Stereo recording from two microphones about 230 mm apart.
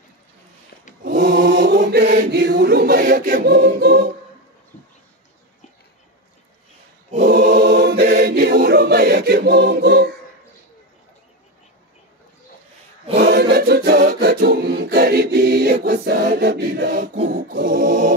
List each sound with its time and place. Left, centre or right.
1.0 s chant: right
2.3 s a capella: right
7.2 s choir: right
13.1 s a capella: right
17.2 s choir: right